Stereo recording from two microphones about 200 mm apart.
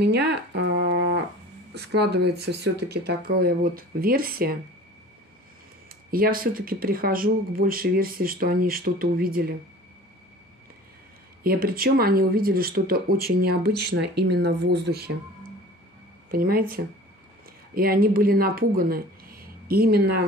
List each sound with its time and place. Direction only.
0.0 s a sound: 55° right (ahead or behind)
1.7 s speech: 55° right (ahead or behind)
6.0 s speech: 45° right (ahead or behind)
11.4 s speech: 50° right (ahead or behind)
16.3 s speech: 45° right (ahead or behind)